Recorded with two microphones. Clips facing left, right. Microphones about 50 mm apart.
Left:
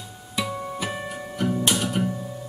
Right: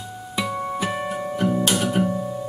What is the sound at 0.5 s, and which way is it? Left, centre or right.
Music, centre.